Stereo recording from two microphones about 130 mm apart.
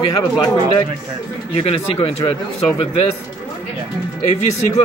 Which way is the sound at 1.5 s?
50° left (ahead or behind).